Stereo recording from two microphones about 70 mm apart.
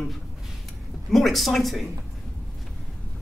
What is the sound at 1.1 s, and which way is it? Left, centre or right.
Speech, centre.